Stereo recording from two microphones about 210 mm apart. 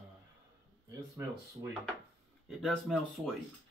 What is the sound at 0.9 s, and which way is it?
Speech, 15° right (ahead or behind).